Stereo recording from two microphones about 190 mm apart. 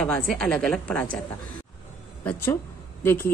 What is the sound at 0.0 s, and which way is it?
A woman's voice, 5° left (ahead or behind).